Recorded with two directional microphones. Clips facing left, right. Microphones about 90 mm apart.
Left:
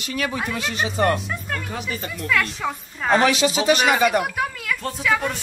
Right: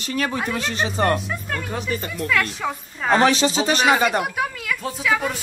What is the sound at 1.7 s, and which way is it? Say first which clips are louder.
Speech: right 3 dB; 40° right (ahead or behind).